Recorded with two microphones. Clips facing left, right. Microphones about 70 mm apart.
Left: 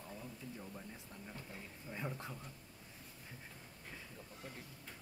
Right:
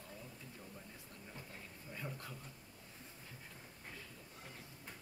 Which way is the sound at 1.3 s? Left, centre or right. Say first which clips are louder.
Left 2 dB; centre.